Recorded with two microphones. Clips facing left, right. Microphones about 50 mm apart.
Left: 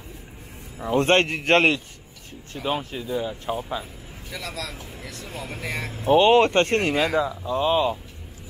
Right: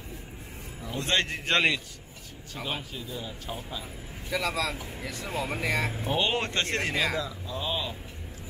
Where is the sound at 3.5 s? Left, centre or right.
Left.